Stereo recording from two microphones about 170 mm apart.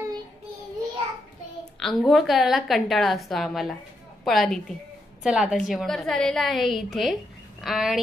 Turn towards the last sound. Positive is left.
turn(degrees=0)  # may be behind; listen again after turning